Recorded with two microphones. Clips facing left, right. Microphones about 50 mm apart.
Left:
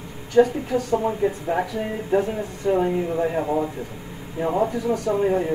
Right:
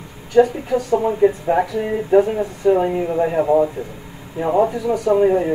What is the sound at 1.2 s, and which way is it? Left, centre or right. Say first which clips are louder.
Speech: right 7 dB; centre.